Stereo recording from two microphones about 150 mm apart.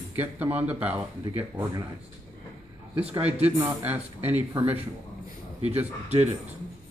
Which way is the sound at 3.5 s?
10° right (ahead or behind).